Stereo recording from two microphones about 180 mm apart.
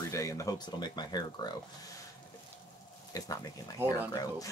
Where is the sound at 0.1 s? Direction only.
20° left (ahead or behind).